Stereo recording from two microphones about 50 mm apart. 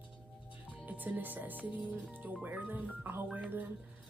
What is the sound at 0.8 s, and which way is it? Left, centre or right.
Speech, right.